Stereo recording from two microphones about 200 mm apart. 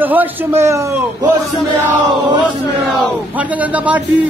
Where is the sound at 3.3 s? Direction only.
5° right (ahead or behind).